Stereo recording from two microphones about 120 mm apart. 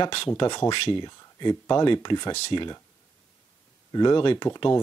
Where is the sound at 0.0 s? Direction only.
45° left (ahead or behind).